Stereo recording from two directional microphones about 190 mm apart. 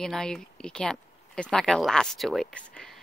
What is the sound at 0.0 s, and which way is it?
Speech, 5° left (ahead or behind).